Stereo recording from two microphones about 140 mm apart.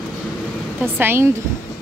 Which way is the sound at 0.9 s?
15° right (ahead or behind).